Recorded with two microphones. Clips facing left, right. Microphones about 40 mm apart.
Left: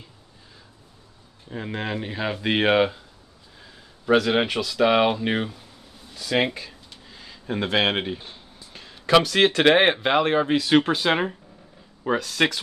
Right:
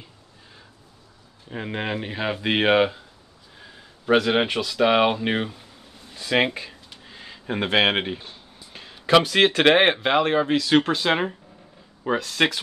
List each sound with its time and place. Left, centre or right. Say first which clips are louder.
1.5 s speech: right 1 dB; right
6.1 s speech: right 1 dB; right
6.5 s a sound: right 2 dB; right
8.7 s speech: even; centre